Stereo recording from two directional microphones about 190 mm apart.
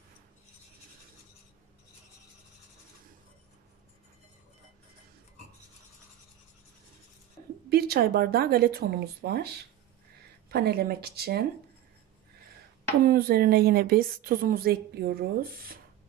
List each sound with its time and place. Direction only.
7.7 s speech: 55° right (ahead or behind)
13.0 s a woman's voice: 50° right (ahead or behind)